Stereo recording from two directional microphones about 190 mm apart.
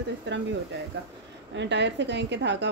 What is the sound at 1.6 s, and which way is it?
A woman's voice, 65° right (ahead or behind).